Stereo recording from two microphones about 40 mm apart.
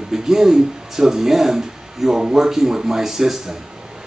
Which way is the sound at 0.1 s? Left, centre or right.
Centre.